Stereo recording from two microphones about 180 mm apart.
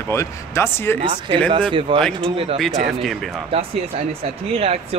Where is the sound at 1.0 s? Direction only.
30° right (ahead or behind).